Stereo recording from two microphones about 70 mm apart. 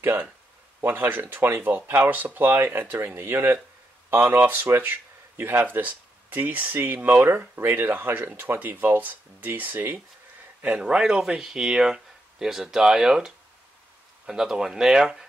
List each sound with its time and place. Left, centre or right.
0.0 s speech: right
10.6 s speech: centre